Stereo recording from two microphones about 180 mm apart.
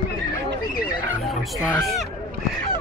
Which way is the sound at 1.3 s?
Centre (ahead or behind).